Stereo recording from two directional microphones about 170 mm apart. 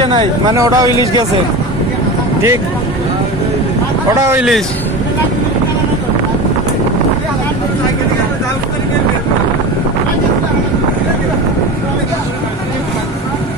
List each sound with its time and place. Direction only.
0.0 s speech: 25° right (ahead or behind)
4.1 s speech: 20° right (ahead or behind)
4.4 s speech: centre (ahead or behind)